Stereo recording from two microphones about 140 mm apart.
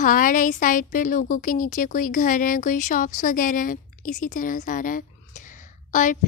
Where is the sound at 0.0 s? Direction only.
75° left (ahead or behind).